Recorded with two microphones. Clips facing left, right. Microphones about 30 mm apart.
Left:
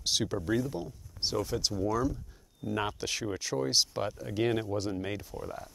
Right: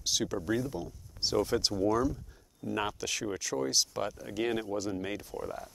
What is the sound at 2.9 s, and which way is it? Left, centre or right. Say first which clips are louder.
Speech: even; centre.